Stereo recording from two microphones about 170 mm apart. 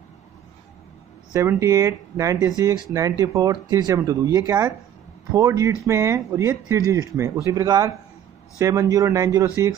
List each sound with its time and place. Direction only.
1.3 s speech: 20° right (ahead or behind)